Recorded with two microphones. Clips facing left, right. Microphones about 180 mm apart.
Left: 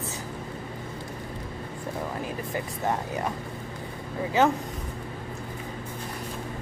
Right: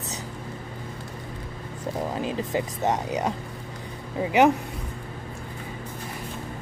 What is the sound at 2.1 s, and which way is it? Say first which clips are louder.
Speech: right 5 dB; 20° right (ahead or behind).